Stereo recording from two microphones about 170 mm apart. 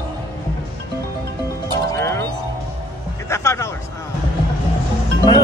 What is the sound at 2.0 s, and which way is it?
Music, 15° left (ahead or behind).